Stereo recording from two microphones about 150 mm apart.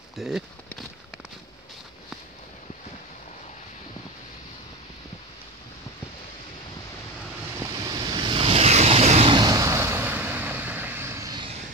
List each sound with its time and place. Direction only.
0.1 s speech: centre (ahead or behind)
7.8 s vehicle: 25° right (ahead or behind); by 9.3 s 45° right (ahead or behind)
9.3 s vehicle: 25° right (ahead or behind)